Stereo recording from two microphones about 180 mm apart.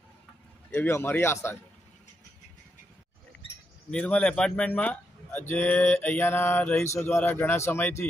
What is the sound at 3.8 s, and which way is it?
Speech, 5° left (ahead or behind).